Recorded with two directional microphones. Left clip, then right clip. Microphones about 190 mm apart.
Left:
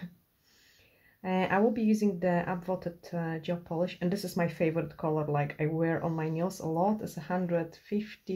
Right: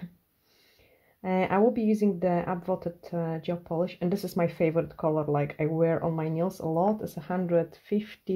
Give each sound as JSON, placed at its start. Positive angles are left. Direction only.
{"t": 1.2, "sound": "speech", "side_deg": -40}